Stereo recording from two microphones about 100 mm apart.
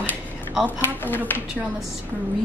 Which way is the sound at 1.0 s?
20° left (ahead or behind).